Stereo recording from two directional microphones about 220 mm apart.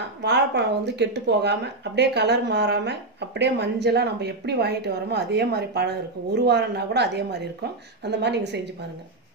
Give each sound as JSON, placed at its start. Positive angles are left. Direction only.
{"t": 0.2, "sound": "speech", "side_deg": -50}